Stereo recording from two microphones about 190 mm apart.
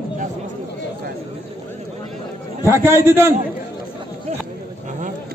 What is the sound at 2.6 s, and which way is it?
Speech, 15° right (ahead or behind).